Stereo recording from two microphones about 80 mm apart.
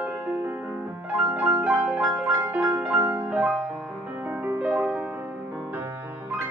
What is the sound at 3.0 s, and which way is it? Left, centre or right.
Music, right.